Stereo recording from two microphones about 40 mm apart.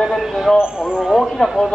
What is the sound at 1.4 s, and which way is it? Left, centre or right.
Speech, centre.